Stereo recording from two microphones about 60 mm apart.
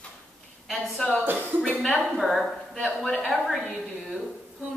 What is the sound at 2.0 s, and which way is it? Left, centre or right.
A woman's voice, centre.